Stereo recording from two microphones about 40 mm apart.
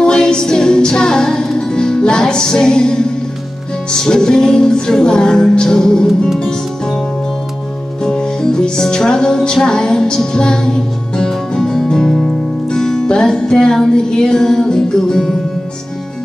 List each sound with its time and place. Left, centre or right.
0.0 s music: centre
8.0 s music: centre